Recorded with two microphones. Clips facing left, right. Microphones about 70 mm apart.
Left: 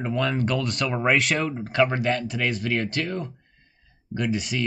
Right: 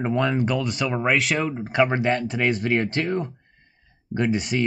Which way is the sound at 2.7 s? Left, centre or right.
Right.